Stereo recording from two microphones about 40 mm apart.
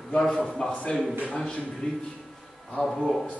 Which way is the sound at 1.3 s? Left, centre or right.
Left.